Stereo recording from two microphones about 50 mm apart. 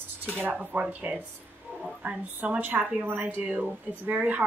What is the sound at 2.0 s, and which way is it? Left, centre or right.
Speech, right.